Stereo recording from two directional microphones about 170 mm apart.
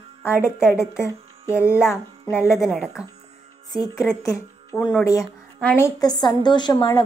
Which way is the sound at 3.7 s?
20° left (ahead or behind).